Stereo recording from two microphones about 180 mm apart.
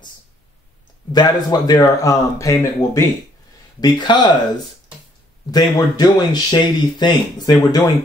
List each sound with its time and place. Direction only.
1.1 s speech: 20° left (ahead or behind)
5.5 s speech: 25° left (ahead or behind)